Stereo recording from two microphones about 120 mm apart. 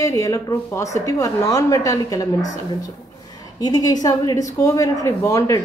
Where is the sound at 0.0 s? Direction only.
25° left (ahead or behind).